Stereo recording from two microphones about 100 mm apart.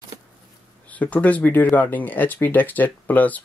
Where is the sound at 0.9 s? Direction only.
15° left (ahead or behind).